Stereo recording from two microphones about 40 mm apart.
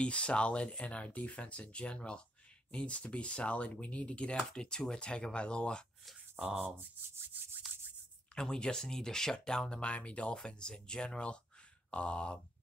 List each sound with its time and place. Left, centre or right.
0.0 s speech: left
6.4 s speech: right
8.4 s speech: centre